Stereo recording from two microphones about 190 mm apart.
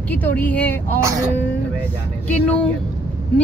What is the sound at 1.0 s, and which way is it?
Speech, 15° right (ahead or behind).